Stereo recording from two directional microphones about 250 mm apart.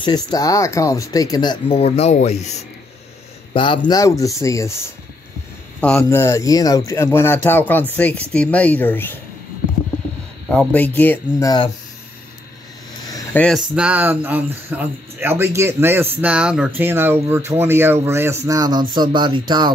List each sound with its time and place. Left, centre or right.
0.0 s speech: centre
3.5 s speech: centre
5.8 s speech: centre
10.5 s speech: centre
13.1 s speech: centre